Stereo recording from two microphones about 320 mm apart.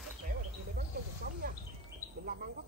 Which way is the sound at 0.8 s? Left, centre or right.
Right.